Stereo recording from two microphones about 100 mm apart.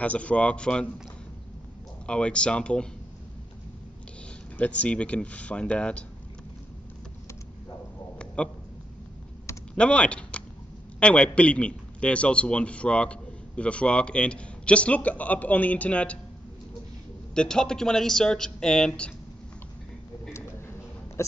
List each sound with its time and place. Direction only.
0.0 s a man's voice: 15° left (ahead or behind)
2.0 s a man's voice: 10° left (ahead or behind)
4.6 s a man's voice: 15° left (ahead or behind)
8.4 s a man's voice: 10° left (ahead or behind)
9.8 s a man's voice: 10° left (ahead or behind)
17.3 s a man's voice: 10° left (ahead or behind)
21.2 s a sound: 30° left (ahead or behind)